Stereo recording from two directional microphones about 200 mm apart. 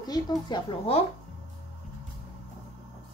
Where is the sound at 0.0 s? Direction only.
20° left (ahead or behind).